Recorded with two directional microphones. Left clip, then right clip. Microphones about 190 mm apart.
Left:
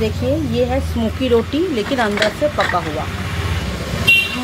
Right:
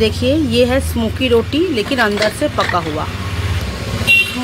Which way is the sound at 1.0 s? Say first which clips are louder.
Even; 5° right (ahead or behind).